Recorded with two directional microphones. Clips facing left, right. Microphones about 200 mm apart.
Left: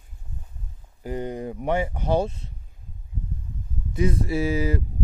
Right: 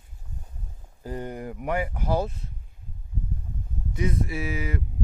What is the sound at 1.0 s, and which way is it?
Speech, 20° left (ahead or behind).